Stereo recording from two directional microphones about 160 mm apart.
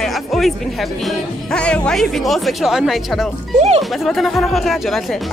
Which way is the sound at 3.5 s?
40° right (ahead or behind).